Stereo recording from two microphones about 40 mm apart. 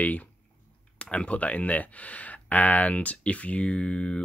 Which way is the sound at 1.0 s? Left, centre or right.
Left.